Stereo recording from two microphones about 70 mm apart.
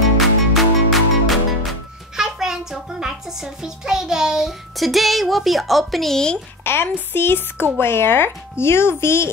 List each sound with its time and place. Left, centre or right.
0.2 s music: centre
6.6 s speech: left